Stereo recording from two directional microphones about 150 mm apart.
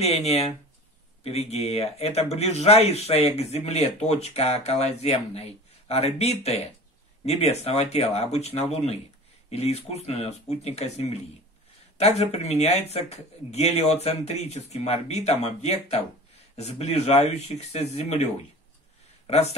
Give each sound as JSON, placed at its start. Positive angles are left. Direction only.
{"t": 0.0, "sound": "speech", "side_deg": 45}